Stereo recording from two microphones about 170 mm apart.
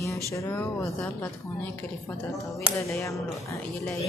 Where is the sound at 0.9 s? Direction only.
5° left (ahead or behind).